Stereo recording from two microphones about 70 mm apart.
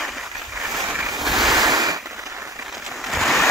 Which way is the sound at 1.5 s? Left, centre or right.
Right.